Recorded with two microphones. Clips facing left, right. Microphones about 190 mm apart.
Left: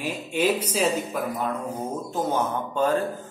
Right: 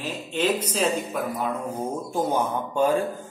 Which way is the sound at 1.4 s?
10° right (ahead or behind).